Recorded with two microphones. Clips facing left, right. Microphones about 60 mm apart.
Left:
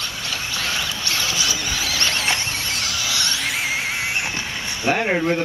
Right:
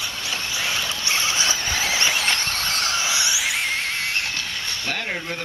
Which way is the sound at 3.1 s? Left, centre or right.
Centre.